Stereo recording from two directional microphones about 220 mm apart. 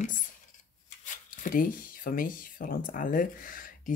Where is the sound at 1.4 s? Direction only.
40° left (ahead or behind).